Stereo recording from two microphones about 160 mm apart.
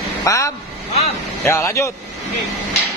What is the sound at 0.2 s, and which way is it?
Speech, 20° left (ahead or behind).